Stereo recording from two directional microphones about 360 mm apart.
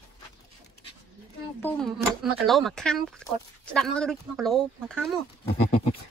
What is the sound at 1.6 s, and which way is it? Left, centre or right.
Speech, centre.